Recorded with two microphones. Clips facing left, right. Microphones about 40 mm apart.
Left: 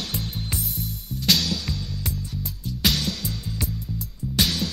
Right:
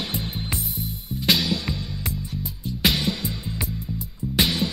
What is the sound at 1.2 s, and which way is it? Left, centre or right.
Music, centre.